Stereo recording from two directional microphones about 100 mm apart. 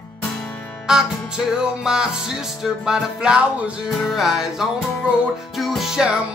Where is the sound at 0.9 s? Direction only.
5° right (ahead or behind).